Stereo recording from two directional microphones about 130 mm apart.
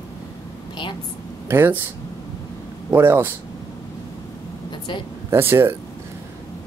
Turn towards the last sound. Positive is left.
turn(degrees=-15)  # may be behind; listen again after turning